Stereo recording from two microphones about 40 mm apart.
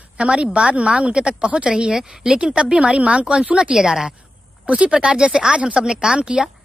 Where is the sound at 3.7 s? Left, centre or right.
Centre.